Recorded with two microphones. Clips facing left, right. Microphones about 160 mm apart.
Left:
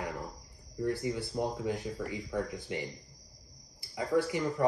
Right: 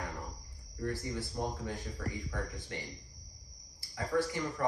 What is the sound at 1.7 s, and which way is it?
Speech, 15° left (ahead or behind).